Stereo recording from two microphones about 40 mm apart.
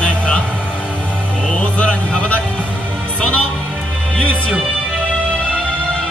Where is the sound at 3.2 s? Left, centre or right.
Left.